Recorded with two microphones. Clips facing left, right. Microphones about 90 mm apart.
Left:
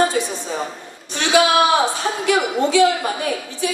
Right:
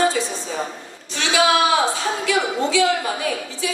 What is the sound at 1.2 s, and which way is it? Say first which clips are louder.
Speech: left 2 dB; 50° left (ahead or behind).